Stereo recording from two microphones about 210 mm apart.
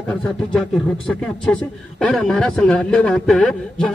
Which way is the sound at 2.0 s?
5° left (ahead or behind).